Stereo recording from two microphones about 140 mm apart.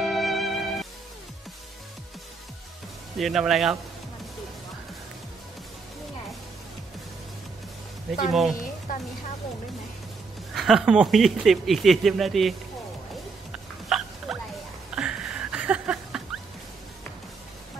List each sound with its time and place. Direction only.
0.0 s music: centre (ahead or behind)
3.2 s speech: centre (ahead or behind)
8.3 s speech: centre (ahead or behind)
8.9 s speech: 85° left
10.5 s speech: centre (ahead or behind)
13.8 s hiccup: 5° right (ahead or behind)
15.0 s a sound: 5° right (ahead or behind)